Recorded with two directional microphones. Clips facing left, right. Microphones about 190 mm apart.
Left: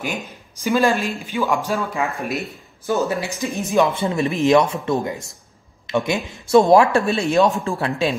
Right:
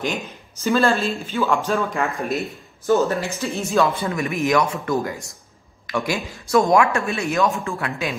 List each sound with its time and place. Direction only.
0.6 s speech: 15° left (ahead or behind)
1.7 s speech: centre (ahead or behind)
2.9 s speech: 15° left (ahead or behind); by 8.2 s 30° left (ahead or behind)